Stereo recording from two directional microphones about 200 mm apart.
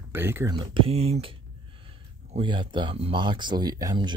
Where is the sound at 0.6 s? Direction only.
30° right (ahead or behind).